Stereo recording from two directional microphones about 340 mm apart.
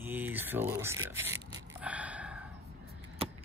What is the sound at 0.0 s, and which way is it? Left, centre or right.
Speech, centre.